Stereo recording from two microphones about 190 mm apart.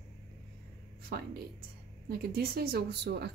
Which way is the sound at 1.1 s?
55° right (ahead or behind).